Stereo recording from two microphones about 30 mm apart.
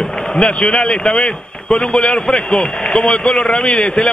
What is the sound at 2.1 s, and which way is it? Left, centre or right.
A man's voice, left.